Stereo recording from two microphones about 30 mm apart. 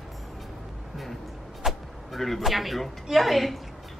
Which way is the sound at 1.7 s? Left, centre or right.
Centre.